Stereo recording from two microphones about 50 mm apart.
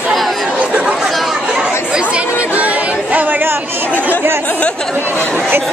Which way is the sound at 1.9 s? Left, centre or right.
Right.